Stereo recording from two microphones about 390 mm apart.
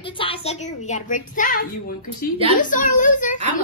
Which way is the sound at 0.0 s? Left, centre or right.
Centre.